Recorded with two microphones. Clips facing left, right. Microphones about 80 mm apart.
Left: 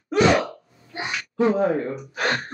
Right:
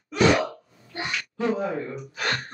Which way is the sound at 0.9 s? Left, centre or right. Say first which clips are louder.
Left 6 dB; left.